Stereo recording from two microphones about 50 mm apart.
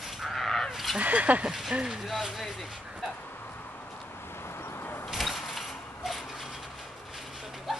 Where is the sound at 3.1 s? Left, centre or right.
Left.